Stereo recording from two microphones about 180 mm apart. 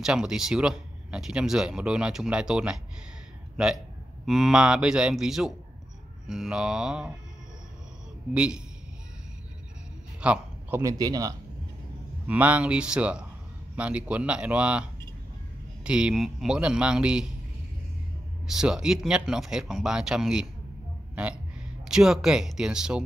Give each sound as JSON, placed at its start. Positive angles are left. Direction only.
{"t": 0.0, "sound": "speech", "side_deg": -5}
{"t": 4.3, "sound": "speech", "side_deg": -5}
{"t": 8.3, "sound": "speech", "side_deg": -5}
{"t": 10.2, "sound": "a sound", "side_deg": -5}
{"t": 10.8, "sound": "speech", "side_deg": -20}
{"t": 12.3, "sound": "speech", "side_deg": -10}
{"t": 18.5, "sound": "speech", "side_deg": -5}